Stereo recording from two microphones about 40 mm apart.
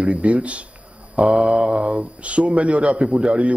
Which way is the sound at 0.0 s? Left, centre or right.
Right.